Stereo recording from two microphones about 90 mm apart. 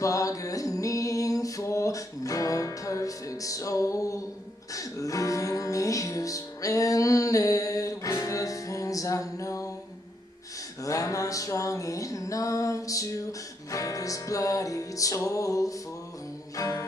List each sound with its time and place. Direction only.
0.0 s music: 40° left (ahead or behind)
10.8 s music: 40° left (ahead or behind)